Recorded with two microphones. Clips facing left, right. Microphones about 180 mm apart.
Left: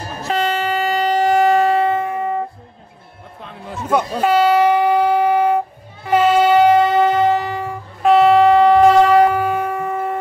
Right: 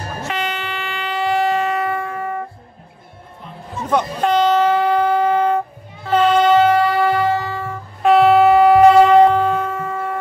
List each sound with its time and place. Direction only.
0.2 s train: 35° left (ahead or behind)
1.9 s music: 20° left (ahead or behind)
3.9 s train: 5° left (ahead or behind)
8.0 s a sound: centre (ahead or behind)
9.3 s music: 10° left (ahead or behind)